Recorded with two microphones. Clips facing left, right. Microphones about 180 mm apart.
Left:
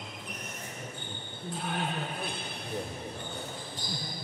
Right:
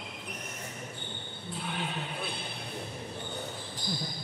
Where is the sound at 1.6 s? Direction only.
45° left (ahead or behind).